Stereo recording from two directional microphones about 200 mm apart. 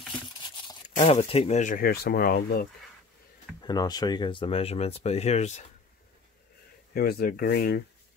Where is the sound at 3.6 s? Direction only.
20° left (ahead or behind).